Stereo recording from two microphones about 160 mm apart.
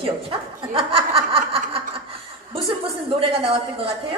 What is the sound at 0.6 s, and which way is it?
Snicker, 35° right (ahead or behind).